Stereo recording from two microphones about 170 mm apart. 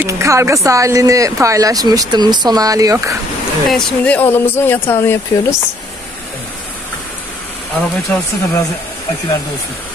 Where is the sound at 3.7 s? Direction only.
10° left (ahead or behind).